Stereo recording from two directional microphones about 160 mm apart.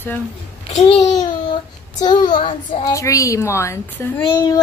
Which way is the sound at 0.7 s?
40° left (ahead or behind).